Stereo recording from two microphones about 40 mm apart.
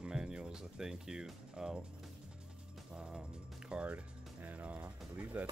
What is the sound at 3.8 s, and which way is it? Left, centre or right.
Music, right.